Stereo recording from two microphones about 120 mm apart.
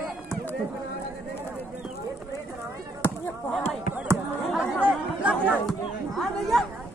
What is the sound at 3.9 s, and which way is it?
Speech, 25° right (ahead or behind).